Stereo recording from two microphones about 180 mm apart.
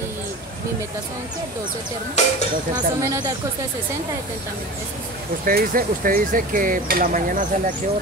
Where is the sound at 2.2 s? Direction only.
40° left (ahead or behind).